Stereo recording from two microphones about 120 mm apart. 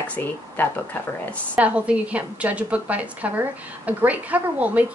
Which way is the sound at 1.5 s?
10° right (ahead or behind).